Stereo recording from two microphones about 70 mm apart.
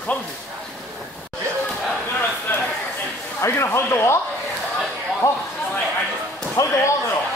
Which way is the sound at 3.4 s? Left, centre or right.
Left.